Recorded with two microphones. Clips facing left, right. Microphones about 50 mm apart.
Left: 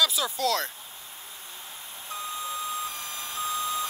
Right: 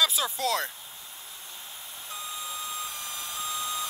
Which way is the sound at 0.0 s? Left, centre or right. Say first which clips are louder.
Left 1 dB; right.